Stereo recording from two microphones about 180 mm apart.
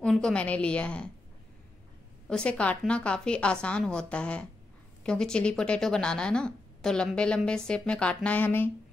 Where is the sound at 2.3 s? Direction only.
5° left (ahead or behind).